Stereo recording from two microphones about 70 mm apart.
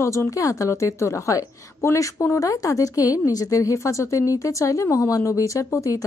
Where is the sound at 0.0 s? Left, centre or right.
Left.